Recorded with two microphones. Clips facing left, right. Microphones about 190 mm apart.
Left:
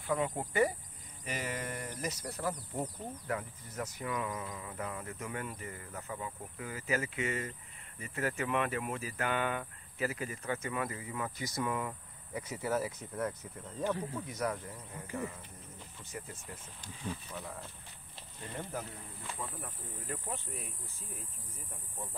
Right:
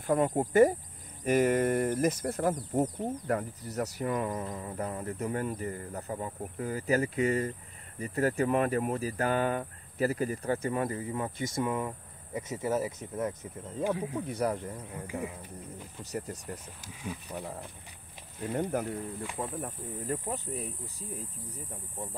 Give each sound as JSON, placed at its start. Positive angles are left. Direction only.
{"t": 0.0, "sound": "speech", "side_deg": -45}
{"t": 13.8, "sound": "speech", "side_deg": -10}
{"t": 14.3, "sound": "speech", "side_deg": -30}
{"t": 15.0, "sound": "speech", "side_deg": -15}
{"t": 16.0, "sound": "speech", "side_deg": -40}
{"t": 16.8, "sound": "speech", "side_deg": -10}
{"t": 17.3, "sound": "speech", "side_deg": -30}
{"t": 18.5, "sound": "speech", "side_deg": -55}
{"t": 19.3, "sound": "speech", "side_deg": -45}